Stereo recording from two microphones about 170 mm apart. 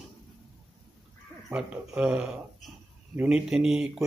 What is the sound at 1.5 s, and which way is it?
A man's voice, 5° right (ahead or behind).